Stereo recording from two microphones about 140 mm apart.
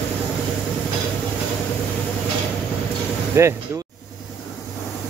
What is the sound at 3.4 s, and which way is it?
Speech, 20° right (ahead or behind).